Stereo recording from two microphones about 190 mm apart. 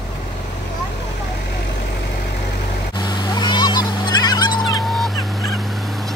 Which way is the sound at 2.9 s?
20° left (ahead or behind).